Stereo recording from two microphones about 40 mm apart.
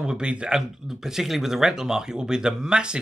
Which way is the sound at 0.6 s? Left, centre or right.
Centre.